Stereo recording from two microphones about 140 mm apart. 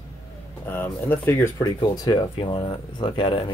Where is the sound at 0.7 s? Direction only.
15° left (ahead or behind); by 3.5 s 35° left (ahead or behind).